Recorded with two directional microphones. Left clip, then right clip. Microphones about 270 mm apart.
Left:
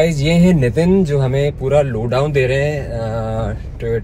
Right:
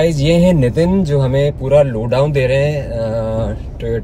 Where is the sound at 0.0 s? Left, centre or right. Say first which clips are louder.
Right 2 dB; left.